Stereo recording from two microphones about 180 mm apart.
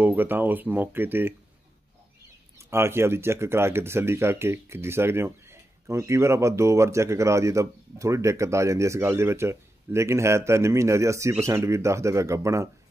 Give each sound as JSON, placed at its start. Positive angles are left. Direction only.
{"t": 0.0, "sound": "speech", "side_deg": -10}
{"t": 2.7, "sound": "speech", "side_deg": -15}